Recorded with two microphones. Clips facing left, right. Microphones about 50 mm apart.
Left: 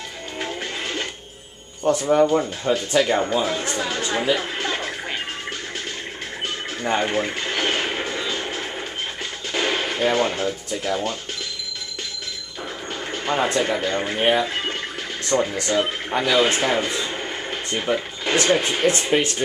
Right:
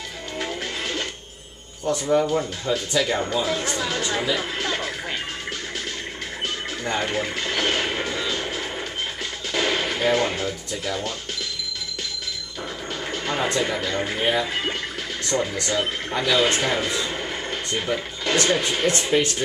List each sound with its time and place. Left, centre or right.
0.4 s music: centre
2.0 s speech: centre
2.7 s speech: left
3.0 s speech: centre
3.4 s speech: centre
4.4 s music: centre
7.0 s music: centre
9.5 s gunshot: centre
10.7 s speech: centre
13.1 s speech: centre
15.3 s speech: left
15.7 s speech: centre